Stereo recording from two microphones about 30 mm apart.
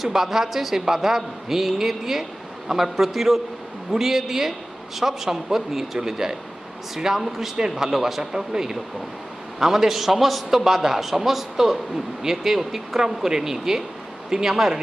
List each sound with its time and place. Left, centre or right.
0.0 s a man's voice: centre